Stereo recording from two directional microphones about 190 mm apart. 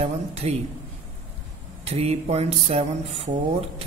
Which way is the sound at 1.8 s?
35° right (ahead or behind).